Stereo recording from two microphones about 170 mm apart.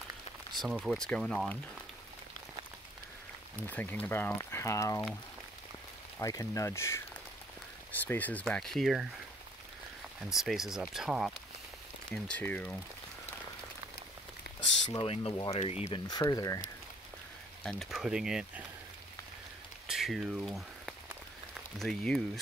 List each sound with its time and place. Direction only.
0.6 s speech: 5° right (ahead or behind)
3.6 s speech: 10° left (ahead or behind)
6.1 s speech: 20° left (ahead or behind)
8.1 s speech: 10° left (ahead or behind)
10.3 s speech: centre (ahead or behind)
12.1 s speech: 10° left (ahead or behind)
14.9 s speech: 30° left (ahead or behind)
16.1 s speech: 20° left (ahead or behind)
17.6 s speech: centre (ahead or behind)
19.9 s speech: centre (ahead or behind)